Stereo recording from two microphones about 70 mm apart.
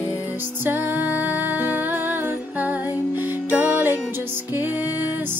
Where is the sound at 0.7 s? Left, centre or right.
Right.